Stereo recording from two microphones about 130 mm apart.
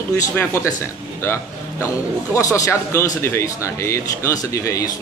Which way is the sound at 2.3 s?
25° left (ahead or behind).